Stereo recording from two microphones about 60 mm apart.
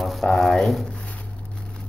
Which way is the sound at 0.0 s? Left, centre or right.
Centre.